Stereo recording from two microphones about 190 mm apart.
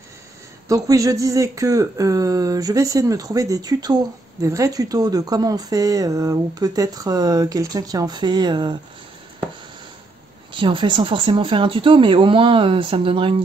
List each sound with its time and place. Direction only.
0.7 s speech: 20° right (ahead or behind)
10.5 s speech: 25° right (ahead or behind)